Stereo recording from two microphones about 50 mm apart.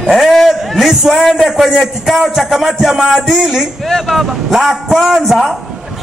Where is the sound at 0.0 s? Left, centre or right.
Centre.